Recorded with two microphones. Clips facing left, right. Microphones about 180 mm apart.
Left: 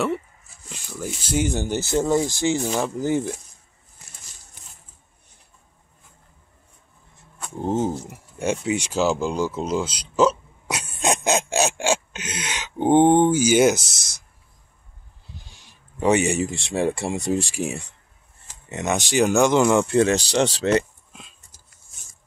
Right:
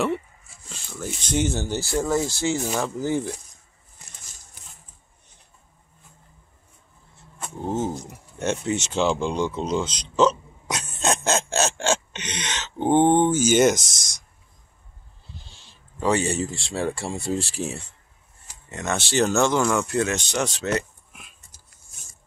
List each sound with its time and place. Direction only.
0.7 s speech: 5° left (ahead or behind)
7.6 s speech: 20° left (ahead or behind)
15.3 s speech: 15° left (ahead or behind)